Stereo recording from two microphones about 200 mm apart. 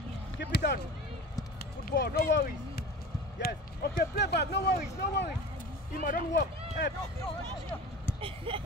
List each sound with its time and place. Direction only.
0.4 s speech: 55° left (ahead or behind)
1.6 s run: 50° left (ahead or behind)
3.3 s speech: 50° left (ahead or behind)
5.9 s speech: 45° left (ahead or behind)
8.2 s a sound: 25° right (ahead or behind)